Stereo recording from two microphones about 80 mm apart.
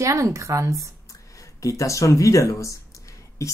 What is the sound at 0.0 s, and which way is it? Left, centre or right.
Speech, right.